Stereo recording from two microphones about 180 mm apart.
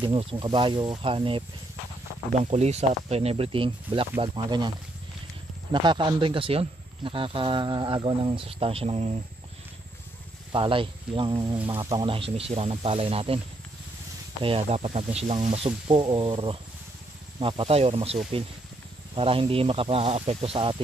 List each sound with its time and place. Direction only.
0.1 s speech: 30° right (ahead or behind)
2.4 s speech: 35° right (ahead or behind)
5.7 s speech: 25° right (ahead or behind)
10.5 s speech: 30° right (ahead or behind)
14.4 s speech: 30° right (ahead or behind)